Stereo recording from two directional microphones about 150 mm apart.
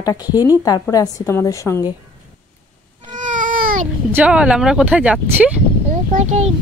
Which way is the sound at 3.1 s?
55° right (ahead or behind).